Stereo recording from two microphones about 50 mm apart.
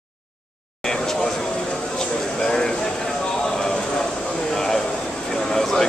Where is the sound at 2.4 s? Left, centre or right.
Centre.